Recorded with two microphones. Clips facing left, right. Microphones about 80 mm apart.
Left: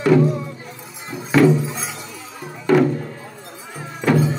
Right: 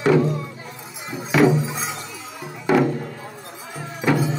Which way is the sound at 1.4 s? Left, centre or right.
Centre.